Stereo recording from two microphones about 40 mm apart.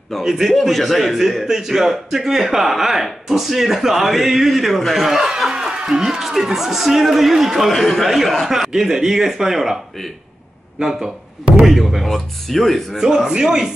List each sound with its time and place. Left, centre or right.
0.2 s a man's voice: centre
0.5 s a man's voice: centre
7.7 s a man's voice: centre
8.5 s a man's voice: centre
10.8 s a man's voice: centre
12.9 s a man's voice: centre